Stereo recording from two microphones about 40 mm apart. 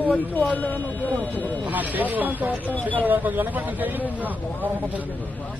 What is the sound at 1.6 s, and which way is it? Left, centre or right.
Speech, right.